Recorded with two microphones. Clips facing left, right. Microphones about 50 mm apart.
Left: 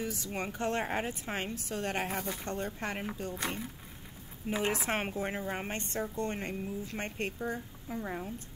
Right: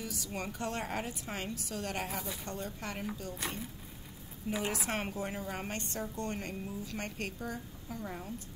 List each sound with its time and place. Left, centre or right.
0.0 s a woman's voice: left